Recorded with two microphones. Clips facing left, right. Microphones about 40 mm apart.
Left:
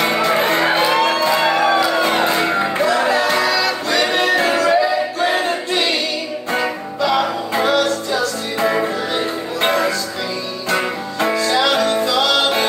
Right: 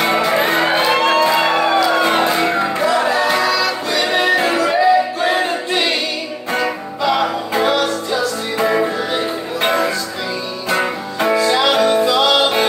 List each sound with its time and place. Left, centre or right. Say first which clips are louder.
0.0 s music: right 1 dB; centre
0.9 s music: right 2 dB; right
1.2 s music: right 1 dB; centre
2.2 s music: right 1 dB; centre